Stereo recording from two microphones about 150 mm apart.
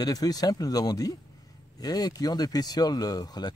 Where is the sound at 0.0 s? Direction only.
25° left (ahead or behind).